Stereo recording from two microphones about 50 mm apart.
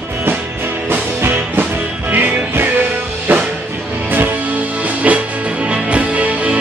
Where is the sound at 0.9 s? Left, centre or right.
Right.